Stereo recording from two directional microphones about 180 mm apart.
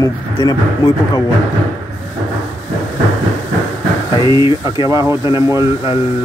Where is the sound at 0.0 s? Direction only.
20° left (ahead or behind).